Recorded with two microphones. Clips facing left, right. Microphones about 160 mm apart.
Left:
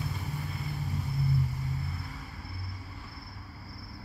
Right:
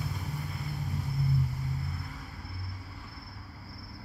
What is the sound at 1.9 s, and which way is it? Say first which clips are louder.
Vehicle: even; centre (ahead or behind).